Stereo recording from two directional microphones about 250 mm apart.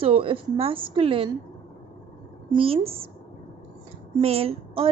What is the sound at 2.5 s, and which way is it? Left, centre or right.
Speech, right.